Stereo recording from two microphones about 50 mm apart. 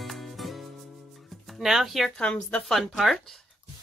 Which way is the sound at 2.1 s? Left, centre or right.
Left.